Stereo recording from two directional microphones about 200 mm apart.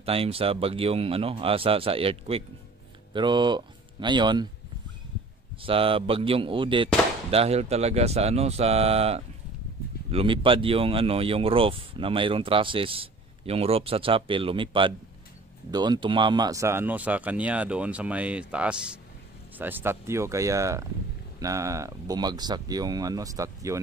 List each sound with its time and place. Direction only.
0.0 s speech: 30° right (ahead or behind)
5.6 s speech: 25° right (ahead or behind)